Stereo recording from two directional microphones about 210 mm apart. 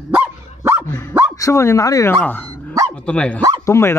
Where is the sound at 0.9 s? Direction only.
10° left (ahead or behind).